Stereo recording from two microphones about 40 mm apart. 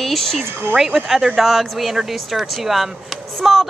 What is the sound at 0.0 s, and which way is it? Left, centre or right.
Speech, centre.